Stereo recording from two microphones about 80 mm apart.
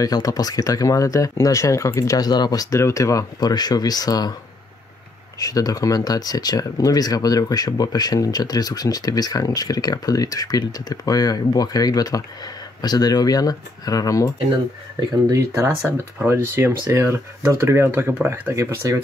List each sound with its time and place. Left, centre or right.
0.0 s speech: left
3.3 s speech: left
5.4 s speech: left
15.3 s speech: right